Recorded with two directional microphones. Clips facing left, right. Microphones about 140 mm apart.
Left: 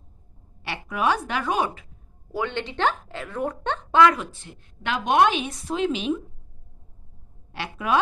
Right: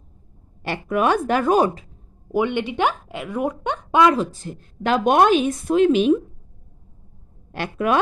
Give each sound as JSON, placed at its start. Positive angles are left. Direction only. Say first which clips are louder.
{"t": 0.6, "sound": "a woman's voice", "louder": "right 7 dB", "side_deg": -50}
{"t": 2.3, "sound": "a woman's voice", "louder": "right 7 dB", "side_deg": -15}
{"t": 4.1, "sound": "a woman's voice", "louder": "right 8 dB", "side_deg": -35}
{"t": 7.5, "sound": "a woman's voice", "louder": "right 4 dB", "side_deg": -50}